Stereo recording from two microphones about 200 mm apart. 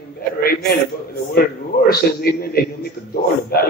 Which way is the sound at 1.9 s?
50° left (ahead or behind).